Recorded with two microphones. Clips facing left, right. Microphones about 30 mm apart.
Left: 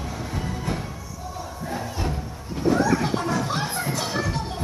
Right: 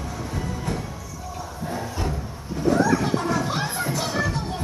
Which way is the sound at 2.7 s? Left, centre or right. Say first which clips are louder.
Right 1 dB; centre.